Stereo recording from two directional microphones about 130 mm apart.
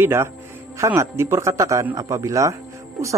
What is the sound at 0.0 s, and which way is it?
A man's voice, 20° right (ahead or behind).